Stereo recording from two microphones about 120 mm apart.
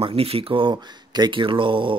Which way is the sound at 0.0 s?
50° right (ahead or behind).